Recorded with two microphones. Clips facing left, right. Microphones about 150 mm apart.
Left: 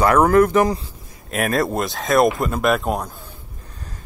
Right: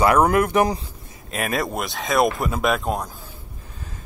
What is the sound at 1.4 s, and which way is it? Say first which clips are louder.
Speech: left 4 dB; centre (ahead or behind).